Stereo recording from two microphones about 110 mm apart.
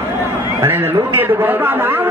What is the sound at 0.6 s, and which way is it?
A man's voice, 20° right (ahead or behind).